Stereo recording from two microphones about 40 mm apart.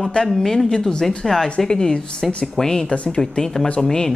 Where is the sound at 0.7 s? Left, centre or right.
Centre.